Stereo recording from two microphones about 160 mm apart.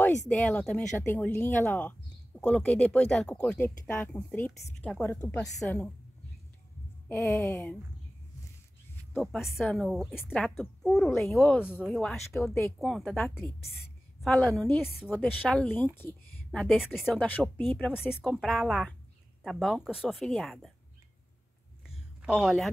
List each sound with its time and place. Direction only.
0.3 s speech: 10° left (ahead or behind)
7.1 s speech: 15° left (ahead or behind)
9.1 s speech: centre (ahead or behind)
21.8 s a sound: 5° right (ahead or behind)